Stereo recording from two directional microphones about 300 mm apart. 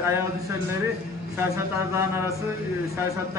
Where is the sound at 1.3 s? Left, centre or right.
Centre.